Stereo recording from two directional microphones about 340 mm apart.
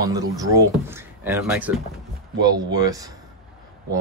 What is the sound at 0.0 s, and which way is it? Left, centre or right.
Speech, centre.